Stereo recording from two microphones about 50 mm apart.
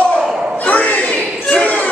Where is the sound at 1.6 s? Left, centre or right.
Left.